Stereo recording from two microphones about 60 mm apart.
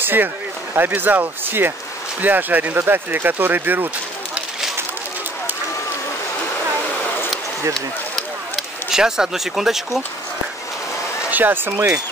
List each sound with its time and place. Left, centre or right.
0.0 s speech: right
8.9 s speech: centre
11.2 s speech: right